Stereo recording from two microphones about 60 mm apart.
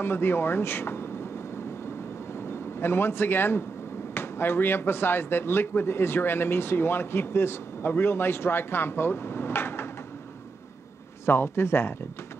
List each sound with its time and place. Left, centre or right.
0.0 s speech: left
2.8 s speech: left
11.2 s speech: left